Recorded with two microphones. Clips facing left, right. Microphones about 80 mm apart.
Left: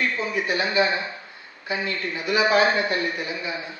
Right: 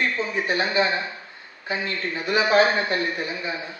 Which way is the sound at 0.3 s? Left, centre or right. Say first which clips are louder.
Even; right.